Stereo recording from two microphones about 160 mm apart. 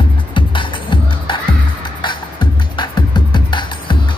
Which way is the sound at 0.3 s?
30° left (ahead or behind).